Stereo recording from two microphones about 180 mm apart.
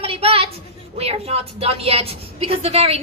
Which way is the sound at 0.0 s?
30° right (ahead or behind).